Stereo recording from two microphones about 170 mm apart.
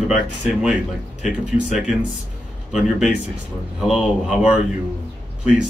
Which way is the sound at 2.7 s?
5° right (ahead or behind).